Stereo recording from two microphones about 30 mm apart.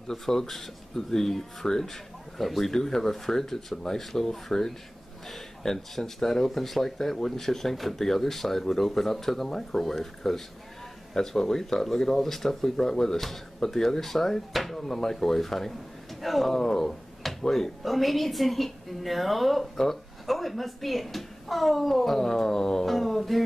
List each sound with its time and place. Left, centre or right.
0.1 s speech: centre
2.7 s speech: centre
9.5 s speech: left
9.8 s speech: centre
11.4 s speech: centre
16.5 s speech: centre
22.8 s mantra: centre